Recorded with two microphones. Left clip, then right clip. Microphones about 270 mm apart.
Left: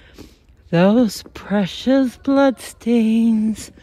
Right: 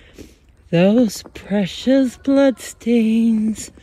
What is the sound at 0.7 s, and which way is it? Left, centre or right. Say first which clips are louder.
Speech: even; left.